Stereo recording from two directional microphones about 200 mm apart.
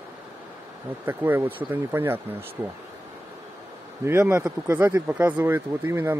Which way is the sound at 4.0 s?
10° right (ahead or behind).